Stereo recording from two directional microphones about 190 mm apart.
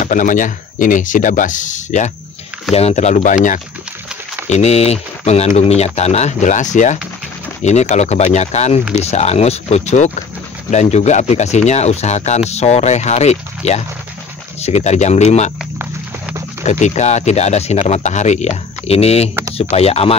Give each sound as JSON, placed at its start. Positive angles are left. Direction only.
{"t": 0.0, "sound": "speech", "side_deg": 40}
{"t": 15.8, "sound": "a sound", "side_deg": -10}
{"t": 16.6, "sound": "speech", "side_deg": 35}